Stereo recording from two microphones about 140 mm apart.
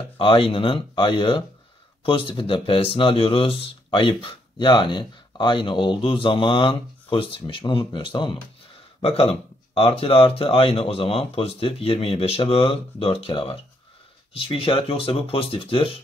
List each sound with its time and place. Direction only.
0.2 s speech: 40° left (ahead or behind)